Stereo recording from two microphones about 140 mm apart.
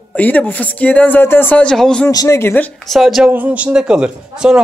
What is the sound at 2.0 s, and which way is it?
Speech, 20° left (ahead or behind).